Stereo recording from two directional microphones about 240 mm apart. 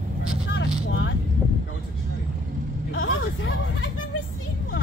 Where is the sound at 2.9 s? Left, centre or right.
Left.